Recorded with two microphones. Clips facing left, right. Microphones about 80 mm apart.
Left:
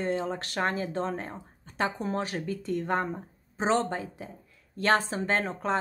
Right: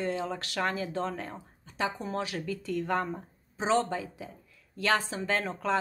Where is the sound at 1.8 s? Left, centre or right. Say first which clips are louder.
Left 3 dB; left.